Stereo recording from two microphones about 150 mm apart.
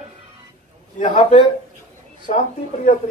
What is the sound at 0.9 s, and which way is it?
A man's voice, 55° left (ahead or behind).